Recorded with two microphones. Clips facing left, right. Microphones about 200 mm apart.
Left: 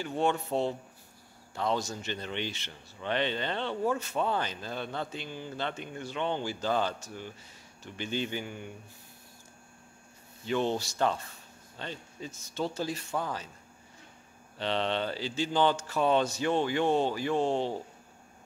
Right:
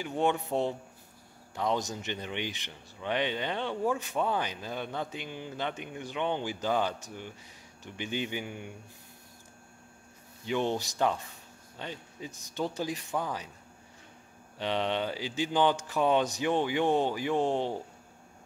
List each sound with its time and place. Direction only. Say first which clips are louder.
0.0 s speech: even; 15° right (ahead or behind)
10.4 s speech: left 1 dB; 15° right (ahead or behind)
14.6 s speech: even; 15° right (ahead or behind)